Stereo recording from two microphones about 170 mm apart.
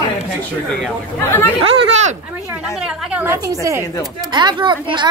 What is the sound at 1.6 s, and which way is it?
Speech, 40° right (ahead or behind).